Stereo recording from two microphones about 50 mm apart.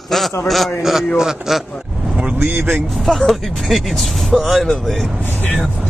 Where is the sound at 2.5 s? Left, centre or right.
Right.